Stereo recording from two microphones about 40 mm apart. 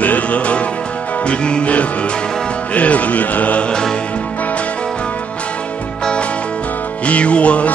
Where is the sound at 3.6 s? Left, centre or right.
Left.